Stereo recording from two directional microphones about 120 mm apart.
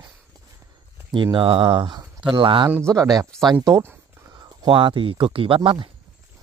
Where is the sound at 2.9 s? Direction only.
30° right (ahead or behind).